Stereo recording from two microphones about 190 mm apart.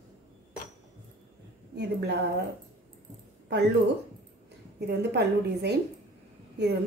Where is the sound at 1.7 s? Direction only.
60° right (ahead or behind).